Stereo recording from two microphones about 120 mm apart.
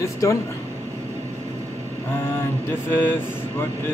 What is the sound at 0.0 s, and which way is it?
Speech, 25° left (ahead or behind).